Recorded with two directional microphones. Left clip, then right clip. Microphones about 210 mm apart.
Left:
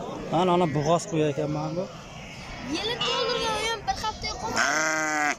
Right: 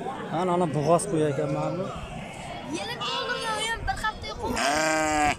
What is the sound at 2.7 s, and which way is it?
Speech, 20° left (ahead or behind).